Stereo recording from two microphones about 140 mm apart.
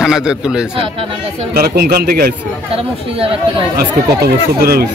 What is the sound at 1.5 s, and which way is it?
Speech, 90° right.